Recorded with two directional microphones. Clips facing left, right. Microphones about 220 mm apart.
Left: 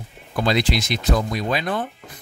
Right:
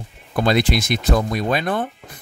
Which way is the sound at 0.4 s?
55° right (ahead or behind).